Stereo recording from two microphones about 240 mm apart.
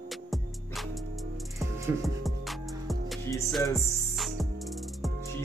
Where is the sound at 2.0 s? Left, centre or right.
Centre.